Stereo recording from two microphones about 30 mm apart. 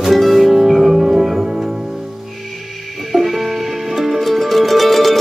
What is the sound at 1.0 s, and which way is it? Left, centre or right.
Music, centre.